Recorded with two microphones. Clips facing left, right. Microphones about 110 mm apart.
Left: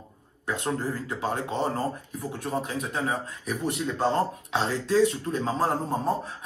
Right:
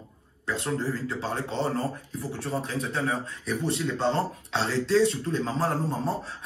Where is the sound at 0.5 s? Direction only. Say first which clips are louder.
Even; 15° left (ahead or behind).